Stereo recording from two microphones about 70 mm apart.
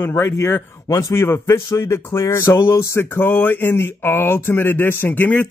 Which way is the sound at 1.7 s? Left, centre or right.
Left.